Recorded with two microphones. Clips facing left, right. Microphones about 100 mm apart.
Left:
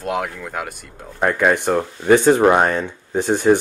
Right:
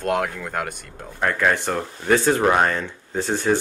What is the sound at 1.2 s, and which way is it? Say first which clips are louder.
Speech: left 4 dB; 15° left (ahead or behind).